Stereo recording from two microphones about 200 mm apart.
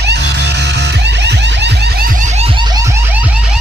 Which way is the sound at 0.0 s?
60° right (ahead or behind).